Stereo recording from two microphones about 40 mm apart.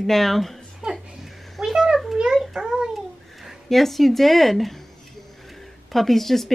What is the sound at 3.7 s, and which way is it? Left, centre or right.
Speech, centre.